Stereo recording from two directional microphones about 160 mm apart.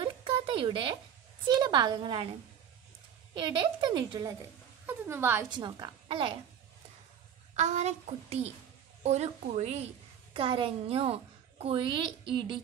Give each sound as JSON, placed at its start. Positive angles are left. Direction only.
{"t": 0.0, "sound": "a sound", "side_deg": -35}
{"t": 1.4, "sound": "speech", "side_deg": -30}
{"t": 3.3, "sound": "speech", "side_deg": -30}
{"t": 4.8, "sound": "a woman's voice", "side_deg": -15}
{"t": 5.6, "sound": "a woman's voice", "side_deg": -30}
{"t": 7.5, "sound": "a woman's voice", "side_deg": -45}